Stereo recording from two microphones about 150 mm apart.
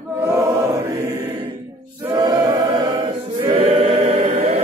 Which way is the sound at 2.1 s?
25° right (ahead or behind).